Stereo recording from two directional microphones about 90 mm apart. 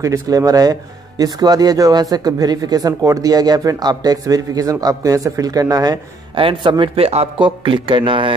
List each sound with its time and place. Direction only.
0.0 s speech: 40° right (ahead or behind)
6.3 s a man's voice: 80° right
6.7 s a man's voice: 65° right (ahead or behind)